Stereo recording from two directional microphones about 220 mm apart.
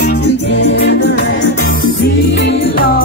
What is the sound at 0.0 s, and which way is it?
Music, 50° left (ahead or behind).